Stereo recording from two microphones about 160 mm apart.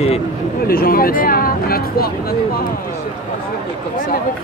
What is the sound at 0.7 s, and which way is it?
Speech, 65° left (ahead or behind).